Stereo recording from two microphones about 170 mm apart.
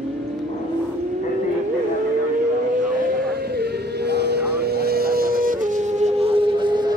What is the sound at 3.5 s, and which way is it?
Vehicle, 75° right (ahead or behind).